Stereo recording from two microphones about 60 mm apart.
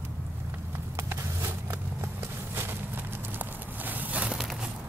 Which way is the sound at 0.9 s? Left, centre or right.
Right.